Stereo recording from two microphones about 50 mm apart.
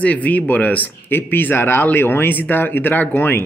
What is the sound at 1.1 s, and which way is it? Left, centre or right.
Speech, left.